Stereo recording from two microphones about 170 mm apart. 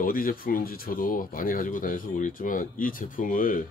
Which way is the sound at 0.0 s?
55° left (ahead or behind).